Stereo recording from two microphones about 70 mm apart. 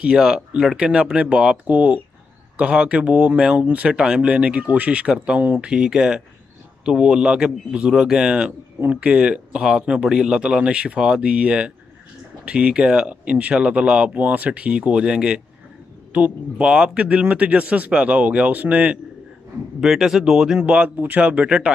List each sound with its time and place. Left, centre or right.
0.0 s speech: centre
19.8 s speech: centre